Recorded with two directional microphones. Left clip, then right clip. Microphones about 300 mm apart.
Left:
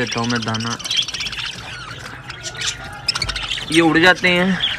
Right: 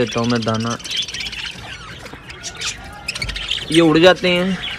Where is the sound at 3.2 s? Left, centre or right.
Centre.